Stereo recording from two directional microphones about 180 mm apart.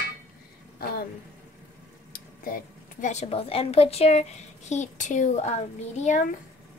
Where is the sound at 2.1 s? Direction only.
50° left (ahead or behind).